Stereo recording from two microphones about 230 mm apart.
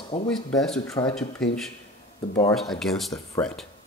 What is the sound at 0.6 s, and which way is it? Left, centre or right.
Speech, centre.